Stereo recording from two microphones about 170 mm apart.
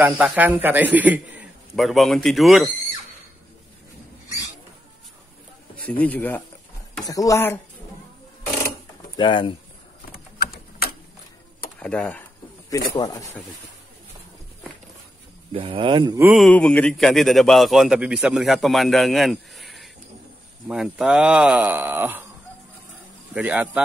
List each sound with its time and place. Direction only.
0.0 s a man's voice: 10° right (ahead or behind)
5.8 s speech: 10° left (ahead or behind)
9.1 s speech: 30° left (ahead or behind)
10.1 s a sound: 60° left (ahead or behind)
11.8 s speech: 5° left (ahead or behind)
13.0 s speech: 20° left (ahead or behind)
15.5 s speech: 30° right (ahead or behind)
16.3 s a man's voice: 5° left (ahead or behind); by 22.2 s 10° right (ahead or behind)
23.3 s a man's voice: 5° right (ahead or behind)